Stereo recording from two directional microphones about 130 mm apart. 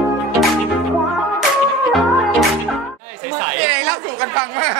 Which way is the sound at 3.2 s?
15° right (ahead or behind).